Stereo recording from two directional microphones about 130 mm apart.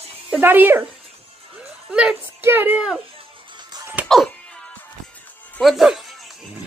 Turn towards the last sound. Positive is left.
turn(degrees=0)  # may be behind; listen again after turning